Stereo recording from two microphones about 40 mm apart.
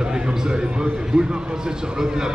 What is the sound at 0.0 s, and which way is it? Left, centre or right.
A man's voice, centre.